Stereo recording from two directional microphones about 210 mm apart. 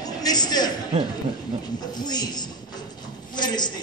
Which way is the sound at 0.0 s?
20° left (ahead or behind).